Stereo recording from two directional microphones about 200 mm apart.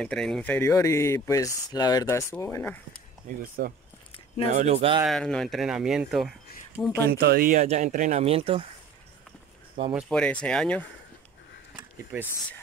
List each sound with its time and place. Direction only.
0.0 s speech: 5° left (ahead or behind)
3.3 s speech: 50° right (ahead or behind)
4.5 s speech: 35° right (ahead or behind)
5.0 s speech: 5° left (ahead or behind)
7.1 s speech: 50° right (ahead or behind); by 8.6 s 30° right (ahead or behind)
9.9 s speech: centre (ahead or behind)
12.1 s speech: 10° right (ahead or behind)